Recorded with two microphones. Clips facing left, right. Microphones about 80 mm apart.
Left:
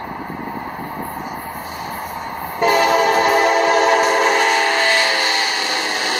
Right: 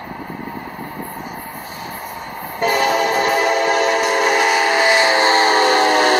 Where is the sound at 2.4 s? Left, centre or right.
Centre.